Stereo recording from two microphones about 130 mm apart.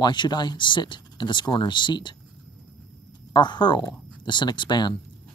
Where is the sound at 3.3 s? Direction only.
35° left (ahead or behind).